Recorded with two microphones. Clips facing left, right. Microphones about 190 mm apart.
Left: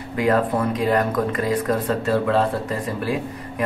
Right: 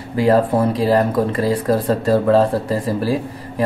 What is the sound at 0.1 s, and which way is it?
Speech, 30° right (ahead or behind).